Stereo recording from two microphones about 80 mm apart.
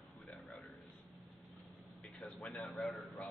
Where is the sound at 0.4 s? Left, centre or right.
Centre.